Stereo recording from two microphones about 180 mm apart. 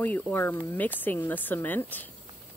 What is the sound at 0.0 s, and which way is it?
Speech, 10° left (ahead or behind).